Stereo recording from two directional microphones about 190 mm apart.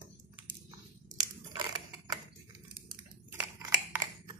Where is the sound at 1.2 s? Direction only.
20° right (ahead or behind).